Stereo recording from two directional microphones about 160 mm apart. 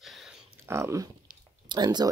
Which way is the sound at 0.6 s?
15° right (ahead or behind).